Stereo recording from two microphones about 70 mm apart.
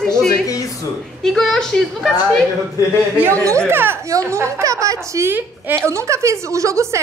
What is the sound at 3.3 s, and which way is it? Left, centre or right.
A woman's voice, right.